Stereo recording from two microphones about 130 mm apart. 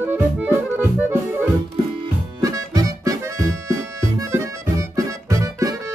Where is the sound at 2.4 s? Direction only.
30° right (ahead or behind).